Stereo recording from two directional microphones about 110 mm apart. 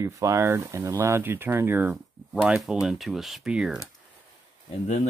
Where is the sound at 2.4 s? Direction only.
5° right (ahead or behind).